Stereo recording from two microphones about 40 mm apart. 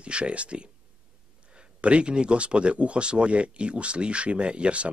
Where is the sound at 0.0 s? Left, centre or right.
Right.